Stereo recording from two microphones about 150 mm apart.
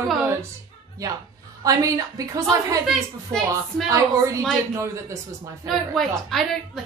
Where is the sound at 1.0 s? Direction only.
20° right (ahead or behind).